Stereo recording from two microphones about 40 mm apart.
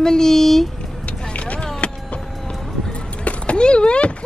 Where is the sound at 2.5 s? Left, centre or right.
Centre.